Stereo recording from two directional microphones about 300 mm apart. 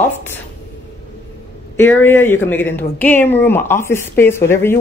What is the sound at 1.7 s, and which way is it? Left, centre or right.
Speech, centre.